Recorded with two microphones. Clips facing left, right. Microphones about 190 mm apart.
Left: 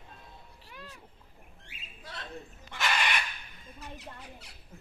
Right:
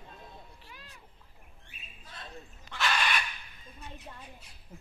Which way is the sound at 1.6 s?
90° left.